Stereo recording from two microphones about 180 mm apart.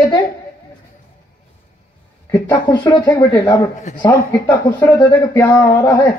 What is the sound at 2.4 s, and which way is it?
Speech, 25° left (ahead or behind).